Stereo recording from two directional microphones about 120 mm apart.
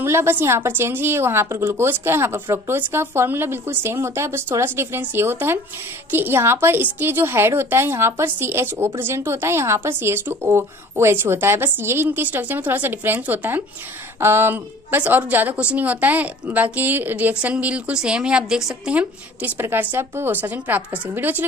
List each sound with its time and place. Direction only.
0.0 s a woman's voice: 20° right (ahead or behind)